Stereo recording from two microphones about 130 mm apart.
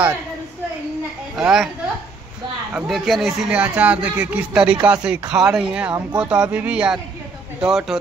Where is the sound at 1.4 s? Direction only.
5° right (ahead or behind).